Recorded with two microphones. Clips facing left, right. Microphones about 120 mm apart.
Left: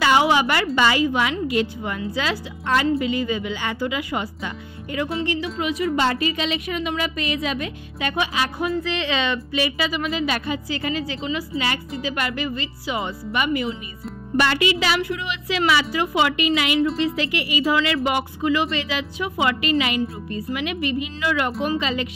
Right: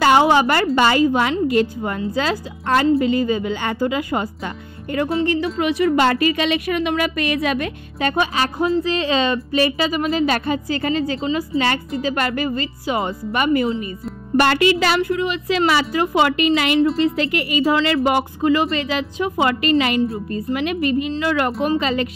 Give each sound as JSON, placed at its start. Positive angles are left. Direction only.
{"t": 0.0, "sound": "a woman's voice", "side_deg": -45}
{"t": 8.0, "sound": "a woman's voice", "side_deg": -40}
{"t": 17.6, "sound": "a woman's voice", "side_deg": -35}